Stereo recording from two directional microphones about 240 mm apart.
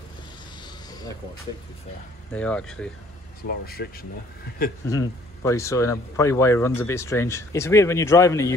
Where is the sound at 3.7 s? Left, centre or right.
Left.